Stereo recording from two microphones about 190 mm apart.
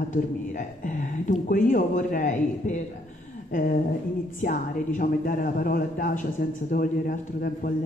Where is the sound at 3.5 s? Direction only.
45° left (ahead or behind).